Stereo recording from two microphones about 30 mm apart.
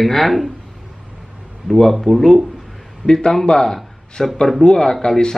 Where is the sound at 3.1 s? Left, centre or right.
Left.